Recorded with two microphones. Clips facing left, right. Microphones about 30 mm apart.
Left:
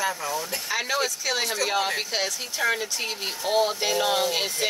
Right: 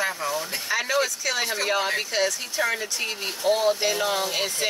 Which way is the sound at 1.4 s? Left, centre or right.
Right.